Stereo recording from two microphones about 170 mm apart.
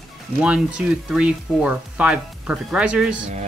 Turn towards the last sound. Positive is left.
turn(degrees=-5)  # may be behind; listen again after turning